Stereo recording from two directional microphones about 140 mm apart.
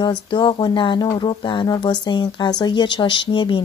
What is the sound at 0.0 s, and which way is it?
Speech, 35° left (ahead or behind).